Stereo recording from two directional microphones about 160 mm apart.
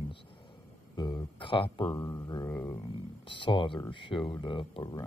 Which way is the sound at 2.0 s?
25° left (ahead or behind).